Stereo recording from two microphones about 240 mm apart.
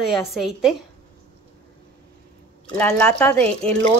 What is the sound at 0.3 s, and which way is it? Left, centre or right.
Speech, centre.